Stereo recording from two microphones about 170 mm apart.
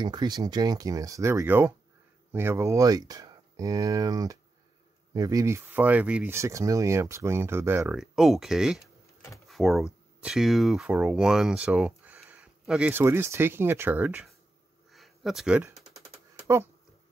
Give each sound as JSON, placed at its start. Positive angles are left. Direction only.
{"t": 0.0, "sound": "speech", "side_deg": -25}
{"t": 7.9, "sound": "speech", "side_deg": 0}
{"t": 14.9, "sound": "a sound", "side_deg": 0}